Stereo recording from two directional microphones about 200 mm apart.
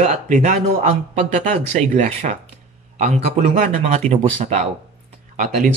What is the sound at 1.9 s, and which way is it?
Speech, 40° right (ahead or behind).